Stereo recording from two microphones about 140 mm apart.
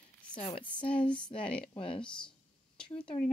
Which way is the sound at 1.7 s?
35° left (ahead or behind).